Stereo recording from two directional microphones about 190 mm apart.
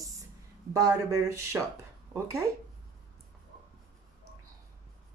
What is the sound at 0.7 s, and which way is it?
Speech, 15° right (ahead or behind).